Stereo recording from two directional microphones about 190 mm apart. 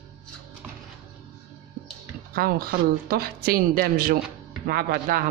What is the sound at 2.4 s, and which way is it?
A woman's voice, 50° right (ahead or behind).